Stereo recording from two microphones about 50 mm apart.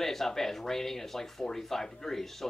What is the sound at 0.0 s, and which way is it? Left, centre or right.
Speech, centre.